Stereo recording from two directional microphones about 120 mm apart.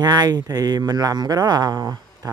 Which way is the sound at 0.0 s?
35° right (ahead or behind).